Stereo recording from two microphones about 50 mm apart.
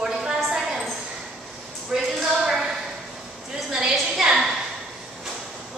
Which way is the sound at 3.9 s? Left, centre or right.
Centre.